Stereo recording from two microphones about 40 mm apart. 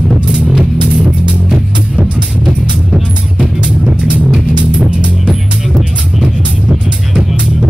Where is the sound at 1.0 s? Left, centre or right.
Right.